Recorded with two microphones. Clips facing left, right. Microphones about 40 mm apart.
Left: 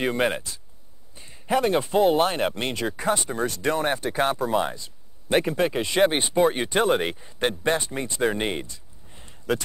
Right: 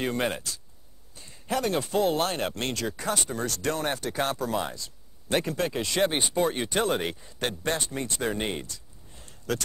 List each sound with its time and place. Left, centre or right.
1.1 s speech: left